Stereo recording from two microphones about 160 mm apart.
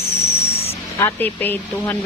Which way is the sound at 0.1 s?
40° left (ahead or behind).